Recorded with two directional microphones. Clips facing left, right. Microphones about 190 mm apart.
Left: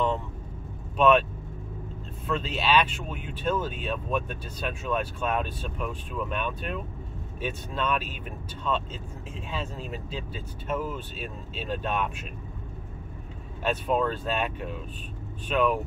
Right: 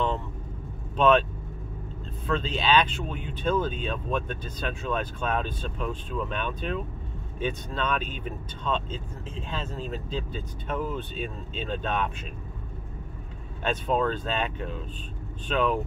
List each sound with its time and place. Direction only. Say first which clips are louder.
0.9 s speech: even; 10° left (ahead or behind)
2.2 s speech: right 1 dB; 10° left (ahead or behind)
13.7 s speech: even; 5° left (ahead or behind)